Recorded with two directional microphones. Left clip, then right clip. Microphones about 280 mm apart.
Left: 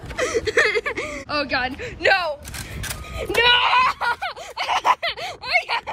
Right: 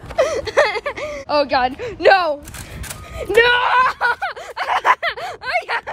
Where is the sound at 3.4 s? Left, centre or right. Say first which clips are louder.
Right 3 dB; right.